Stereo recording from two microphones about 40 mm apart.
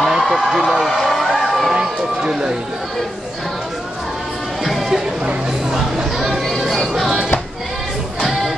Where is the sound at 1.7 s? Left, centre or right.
Centre.